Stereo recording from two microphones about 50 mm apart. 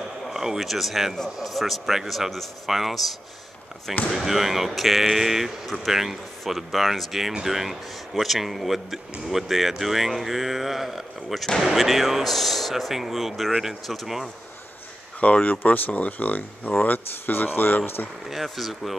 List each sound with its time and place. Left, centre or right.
0.3 s speech: centre
15.1 s speech: left
18.3 s speech: centre